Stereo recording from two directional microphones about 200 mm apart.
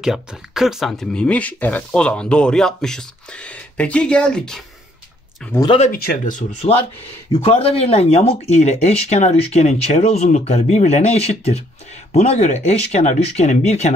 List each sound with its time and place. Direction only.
0.0 s speech: centre (ahead or behind)
5.8 s speech: 45° left (ahead or behind)
7.3 s speech: 30° left (ahead or behind)